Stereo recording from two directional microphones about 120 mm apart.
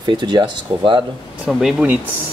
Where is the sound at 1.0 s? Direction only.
10° right (ahead or behind).